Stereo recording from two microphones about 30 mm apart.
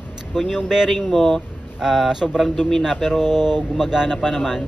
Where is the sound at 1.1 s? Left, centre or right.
Centre.